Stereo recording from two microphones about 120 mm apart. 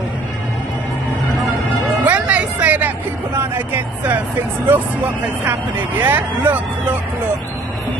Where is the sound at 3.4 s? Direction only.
15° right (ahead or behind).